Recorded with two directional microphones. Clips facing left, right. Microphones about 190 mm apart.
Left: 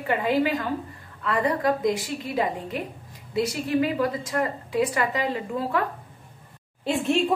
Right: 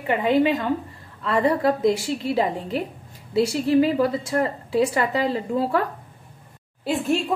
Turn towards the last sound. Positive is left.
turn(degrees=0)  # may be behind; listen again after turning